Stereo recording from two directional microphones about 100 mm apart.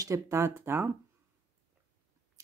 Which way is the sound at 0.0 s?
30° right (ahead or behind).